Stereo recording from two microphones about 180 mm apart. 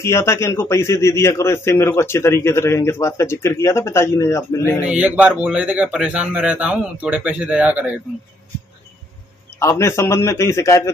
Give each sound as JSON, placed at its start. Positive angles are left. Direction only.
{"t": 0.0, "sound": "a man's voice", "side_deg": 15}
{"t": 4.8, "sound": "a man's voice", "side_deg": -5}
{"t": 9.6, "sound": "a man's voice", "side_deg": 15}